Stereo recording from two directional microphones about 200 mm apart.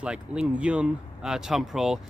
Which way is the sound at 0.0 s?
5° right (ahead or behind).